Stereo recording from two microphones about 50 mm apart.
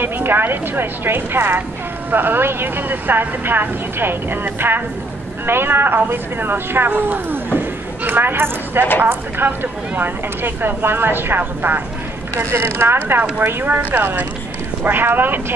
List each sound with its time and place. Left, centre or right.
0.0 s speech: right
7.5 s a sound: right
9.0 s speech: right
12.4 s speech: right